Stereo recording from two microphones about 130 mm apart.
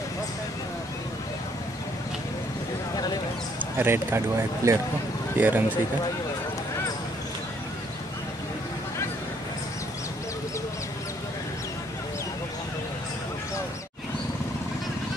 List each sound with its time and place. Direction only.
3.7 s speech: 15° right (ahead or behind)